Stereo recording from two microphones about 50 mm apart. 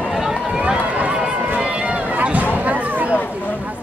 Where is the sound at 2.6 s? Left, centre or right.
Right.